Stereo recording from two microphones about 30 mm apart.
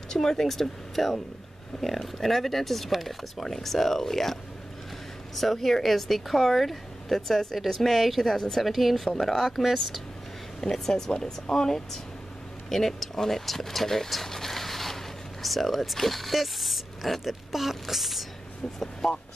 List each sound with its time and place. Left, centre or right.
0.1 s speech: centre
8.3 s speech: centre
8.5 s speech: centre
9.6 s speech: centre
10.6 s speech: centre
11.1 s speech: left; by 14.1 s centre
14.1 s a sound: centre
15.4 s speech: centre